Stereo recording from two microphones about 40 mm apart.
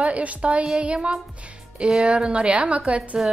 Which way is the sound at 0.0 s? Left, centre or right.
Right.